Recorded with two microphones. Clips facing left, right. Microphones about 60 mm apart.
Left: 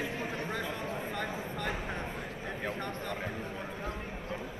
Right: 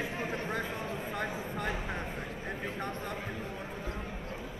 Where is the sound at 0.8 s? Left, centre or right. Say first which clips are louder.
Left 1 dB; left.